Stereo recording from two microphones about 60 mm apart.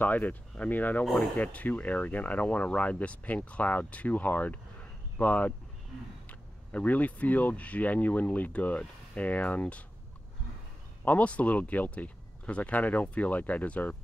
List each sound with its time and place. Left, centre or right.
0.0 s speech: left
11.1 s speech: left